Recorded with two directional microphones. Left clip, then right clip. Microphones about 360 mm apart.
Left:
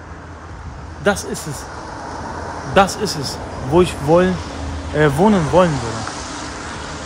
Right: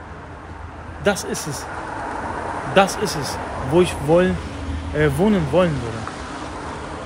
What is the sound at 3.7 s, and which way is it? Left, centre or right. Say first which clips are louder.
Speech: left 3 dB; centre.